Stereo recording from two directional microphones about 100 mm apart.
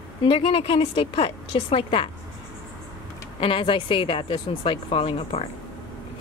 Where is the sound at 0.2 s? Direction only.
60° left (ahead or behind).